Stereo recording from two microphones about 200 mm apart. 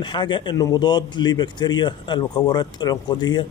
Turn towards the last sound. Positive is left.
turn(degrees=20)  # may be behind; listen again after turning